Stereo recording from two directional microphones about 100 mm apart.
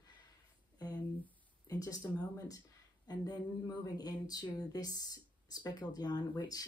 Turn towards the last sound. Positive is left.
turn(degrees=40)  # may be behind; listen again after turning